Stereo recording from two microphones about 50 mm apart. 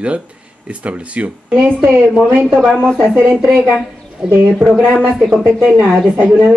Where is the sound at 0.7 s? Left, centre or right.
Right.